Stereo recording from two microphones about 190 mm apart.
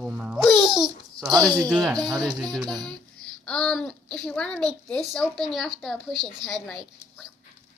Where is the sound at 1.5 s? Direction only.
5° left (ahead or behind).